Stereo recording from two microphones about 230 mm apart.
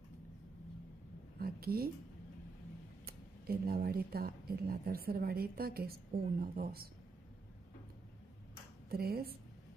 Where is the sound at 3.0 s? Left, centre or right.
Right.